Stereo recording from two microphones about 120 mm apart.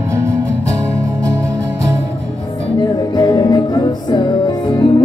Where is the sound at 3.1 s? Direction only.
35° left (ahead or behind).